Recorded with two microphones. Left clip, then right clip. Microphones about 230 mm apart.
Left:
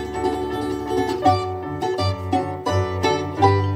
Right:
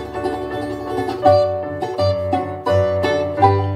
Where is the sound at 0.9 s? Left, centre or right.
Left.